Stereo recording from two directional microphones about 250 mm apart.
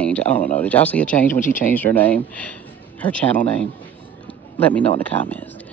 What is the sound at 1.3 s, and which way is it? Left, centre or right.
Speech, left.